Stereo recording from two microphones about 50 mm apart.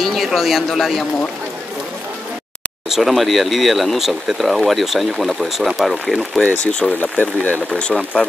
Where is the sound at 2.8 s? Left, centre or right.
Centre.